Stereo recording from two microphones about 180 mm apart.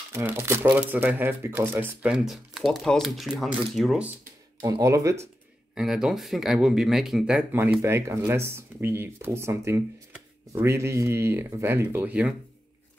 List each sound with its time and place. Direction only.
0.1 s speech: 10° right (ahead or behind)
4.6 s speech: 20° right (ahead or behind)
5.8 s speech: 5° right (ahead or behind)